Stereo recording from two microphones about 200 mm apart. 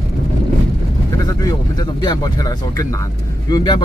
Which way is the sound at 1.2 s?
20° left (ahead or behind).